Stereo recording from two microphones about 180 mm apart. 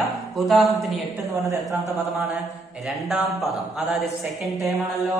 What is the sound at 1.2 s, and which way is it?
Speech, 15° right (ahead or behind).